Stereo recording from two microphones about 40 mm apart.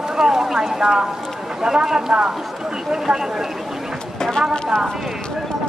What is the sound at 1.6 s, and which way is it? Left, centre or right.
Speech, centre.